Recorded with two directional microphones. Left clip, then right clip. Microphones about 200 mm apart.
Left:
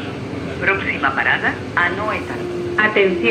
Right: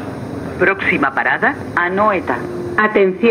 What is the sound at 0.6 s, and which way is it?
Speech, 50° right (ahead or behind).